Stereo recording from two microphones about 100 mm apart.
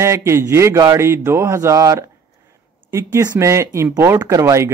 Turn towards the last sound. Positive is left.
turn(degrees=-35)  # may be behind; listen again after turning